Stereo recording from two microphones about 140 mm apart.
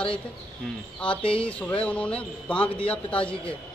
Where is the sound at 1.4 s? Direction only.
10° left (ahead or behind).